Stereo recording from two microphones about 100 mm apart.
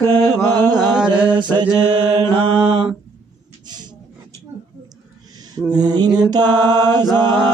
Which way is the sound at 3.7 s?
45° right (ahead or behind).